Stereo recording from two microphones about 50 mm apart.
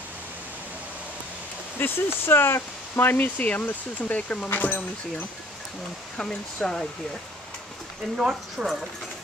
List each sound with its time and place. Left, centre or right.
1.8 s speech: left
3.3 s speech: left
4.5 s speech: left
6.1 s speech: centre
8.2 s speech: centre